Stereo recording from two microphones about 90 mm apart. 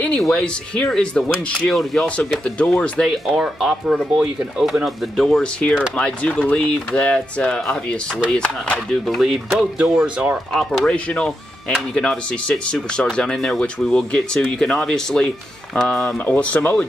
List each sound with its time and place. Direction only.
0.3 s speech: 10° left (ahead or behind)
2.0 s speech: 15° left (ahead or behind)
3.1 s speech: 5° right (ahead or behind); by 8.7 s 15° left (ahead or behind)
9.0 s speech: centre (ahead or behind)
9.8 s speech: 15° right (ahead or behind)
10.5 s speech: 5° left (ahead or behind)